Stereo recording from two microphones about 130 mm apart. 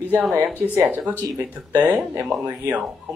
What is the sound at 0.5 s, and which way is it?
Speech, 10° right (ahead or behind).